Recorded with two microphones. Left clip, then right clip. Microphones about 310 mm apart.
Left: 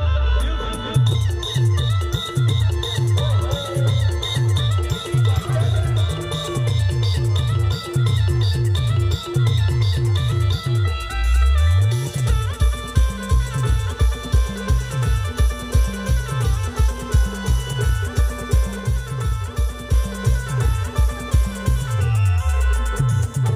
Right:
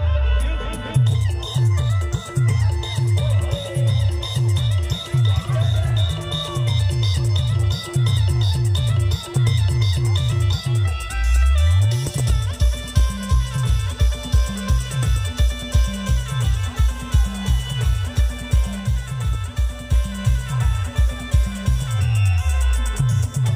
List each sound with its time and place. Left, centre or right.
0.8 s music: centre
11.9 s music: centre
20.2 s music: centre
22.9 s music: centre